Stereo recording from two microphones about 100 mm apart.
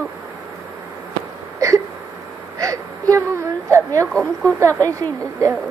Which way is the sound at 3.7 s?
30° right (ahead or behind).